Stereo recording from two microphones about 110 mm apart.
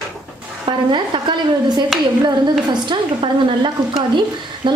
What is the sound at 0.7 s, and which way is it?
A woman's voice, 45° right (ahead or behind).